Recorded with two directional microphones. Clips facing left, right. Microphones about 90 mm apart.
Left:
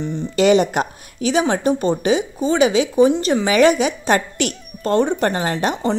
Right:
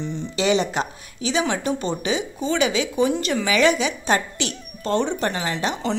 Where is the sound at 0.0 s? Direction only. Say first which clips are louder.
Left 7 dB; 50° left (ahead or behind).